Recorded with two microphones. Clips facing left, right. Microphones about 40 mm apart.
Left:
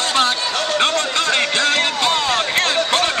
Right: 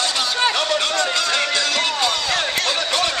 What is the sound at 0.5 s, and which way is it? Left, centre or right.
Music, left.